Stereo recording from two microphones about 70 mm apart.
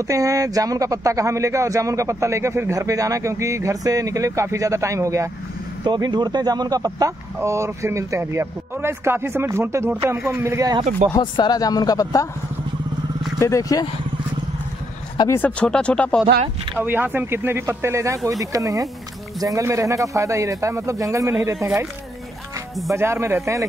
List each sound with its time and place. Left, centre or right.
0.0 s speech: right
5.9 s speech: right
7.4 s speech: right
11.1 s speech: left
13.4 s speech: left
15.4 s speech: centre
16.8 s speech: right
22.9 s speech: right